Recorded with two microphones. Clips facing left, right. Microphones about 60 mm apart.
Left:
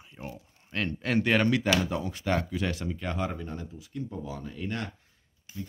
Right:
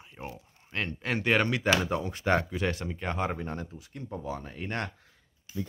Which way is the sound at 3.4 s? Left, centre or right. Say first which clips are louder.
Right 2 dB; right.